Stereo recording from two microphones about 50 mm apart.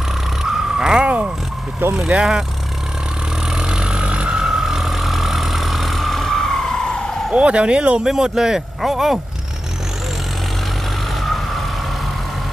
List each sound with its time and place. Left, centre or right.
0.4 s crow: centre
2.0 s speech: centre
3.5 s vehicle: centre
4.4 s vehicle: centre
7.3 s speech: right
8.0 s speech: centre